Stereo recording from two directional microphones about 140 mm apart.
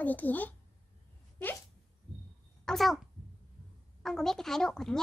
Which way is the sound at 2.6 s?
Centre (ahead or behind).